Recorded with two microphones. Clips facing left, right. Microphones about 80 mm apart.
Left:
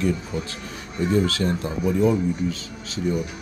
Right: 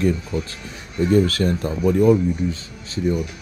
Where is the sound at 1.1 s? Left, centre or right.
Right.